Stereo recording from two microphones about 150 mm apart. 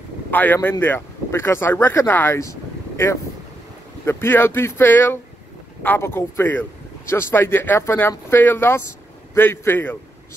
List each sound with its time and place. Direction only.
0.3 s speech: 10° left (ahead or behind)
4.0 s speech: 15° left (ahead or behind)